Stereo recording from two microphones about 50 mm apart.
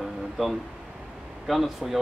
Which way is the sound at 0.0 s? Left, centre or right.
Centre.